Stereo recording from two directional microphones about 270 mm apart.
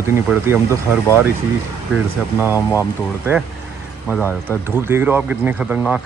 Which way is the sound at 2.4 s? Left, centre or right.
Centre.